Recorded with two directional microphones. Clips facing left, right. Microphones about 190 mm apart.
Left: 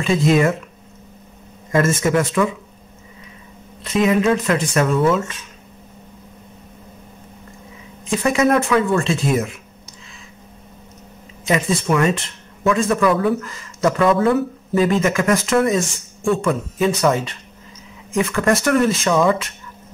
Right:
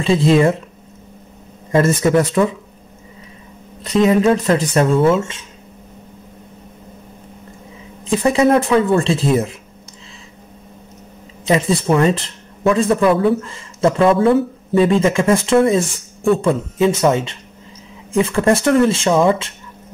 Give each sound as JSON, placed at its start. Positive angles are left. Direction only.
{"t": 0.0, "sound": "speech", "side_deg": -30}
{"t": 1.7, "sound": "speech", "side_deg": -35}
{"t": 3.8, "sound": "speech", "side_deg": -35}
{"t": 8.0, "sound": "speech", "side_deg": -30}
{"t": 11.4, "sound": "speech", "side_deg": -30}